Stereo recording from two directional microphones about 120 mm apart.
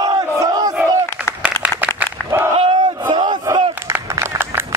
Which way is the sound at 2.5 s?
45° right (ahead or behind).